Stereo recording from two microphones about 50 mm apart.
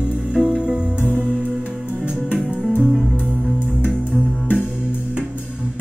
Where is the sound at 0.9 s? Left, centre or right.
Left.